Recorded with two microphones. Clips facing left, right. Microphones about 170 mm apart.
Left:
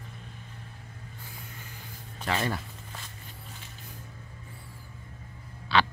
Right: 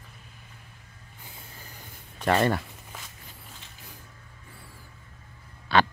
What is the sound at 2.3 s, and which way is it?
Speech, 55° right (ahead or behind).